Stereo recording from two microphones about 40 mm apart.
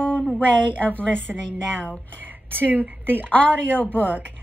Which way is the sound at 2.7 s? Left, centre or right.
Right.